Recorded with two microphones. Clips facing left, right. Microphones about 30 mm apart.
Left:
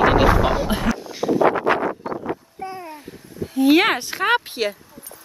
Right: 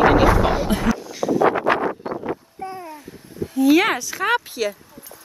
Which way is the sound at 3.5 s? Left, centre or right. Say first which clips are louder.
Even; left.